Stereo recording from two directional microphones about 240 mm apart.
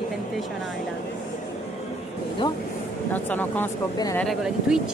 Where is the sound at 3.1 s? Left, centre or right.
Centre.